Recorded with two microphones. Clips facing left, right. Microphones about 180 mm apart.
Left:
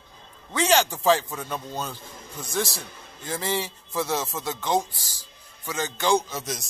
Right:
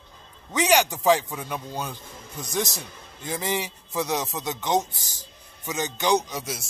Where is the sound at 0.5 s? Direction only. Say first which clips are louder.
Right 1 dB; 15° right (ahead or behind).